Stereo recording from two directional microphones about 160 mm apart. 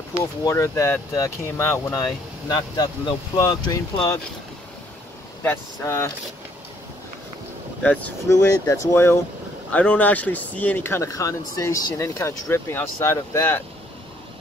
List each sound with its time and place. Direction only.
0.2 s speech: 20° left (ahead or behind)
5.4 s speech: 15° left (ahead or behind)
7.8 s speech: 5° left (ahead or behind)
8.3 s speech: 20° left (ahead or behind)